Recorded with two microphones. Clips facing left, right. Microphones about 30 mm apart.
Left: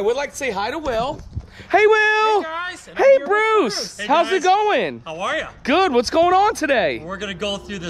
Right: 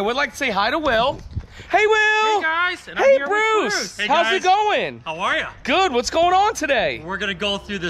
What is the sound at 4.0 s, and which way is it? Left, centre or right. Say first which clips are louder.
Speech: left 1 dB; right.